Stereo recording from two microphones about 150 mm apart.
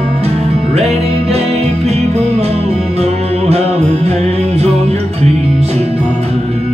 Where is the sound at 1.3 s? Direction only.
45° right (ahead or behind).